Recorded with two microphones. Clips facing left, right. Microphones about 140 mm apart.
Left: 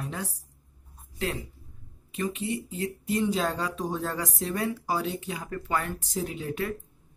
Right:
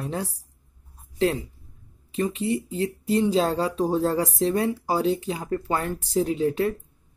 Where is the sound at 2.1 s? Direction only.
30° right (ahead or behind).